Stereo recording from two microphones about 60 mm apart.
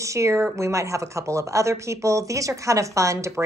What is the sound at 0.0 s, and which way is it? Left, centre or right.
Speech, right.